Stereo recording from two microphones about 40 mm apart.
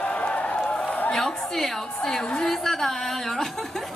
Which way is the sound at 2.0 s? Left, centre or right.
Centre.